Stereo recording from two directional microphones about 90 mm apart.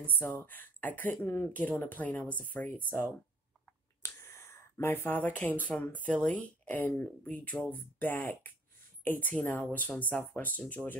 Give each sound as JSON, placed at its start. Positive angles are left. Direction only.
{"t": 0.0, "sound": "speech", "side_deg": 20}
{"t": 4.0, "sound": "speech", "side_deg": 30}